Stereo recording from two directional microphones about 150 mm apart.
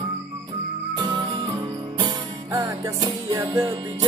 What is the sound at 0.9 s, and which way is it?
Music, 30° right (ahead or behind).